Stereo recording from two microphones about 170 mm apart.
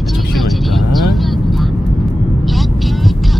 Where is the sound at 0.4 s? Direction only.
Centre (ahead or behind).